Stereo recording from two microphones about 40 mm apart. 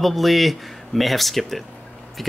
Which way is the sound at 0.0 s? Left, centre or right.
Centre.